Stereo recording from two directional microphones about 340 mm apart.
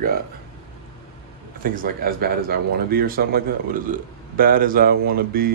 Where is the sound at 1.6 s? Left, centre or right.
Right.